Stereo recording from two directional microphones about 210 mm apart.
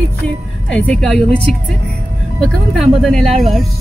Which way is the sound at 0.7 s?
5° left (ahead or behind).